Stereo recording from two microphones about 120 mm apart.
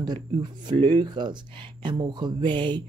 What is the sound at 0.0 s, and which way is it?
Speech, 40° right (ahead or behind).